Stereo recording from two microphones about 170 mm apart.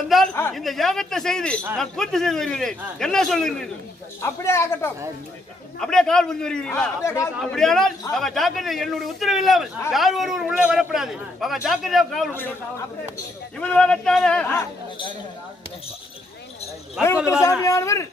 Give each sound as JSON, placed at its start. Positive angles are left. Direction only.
{"t": 0.3, "sound": "a man's voice", "side_deg": 10}
{"t": 0.6, "sound": "a man's voice", "side_deg": 0}
{"t": 4.2, "sound": "a man's voice", "side_deg": 15}
{"t": 5.8, "sound": "a man's voice", "side_deg": 5}
{"t": 13.6, "sound": "a man's voice", "side_deg": 5}
{"t": 17.0, "sound": "a man's voice", "side_deg": -5}
{"t": 17.3, "sound": "a man's voice", "side_deg": 20}